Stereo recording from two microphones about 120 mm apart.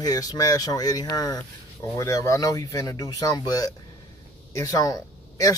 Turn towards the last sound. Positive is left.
turn(degrees=30)  # may be behind; listen again after turning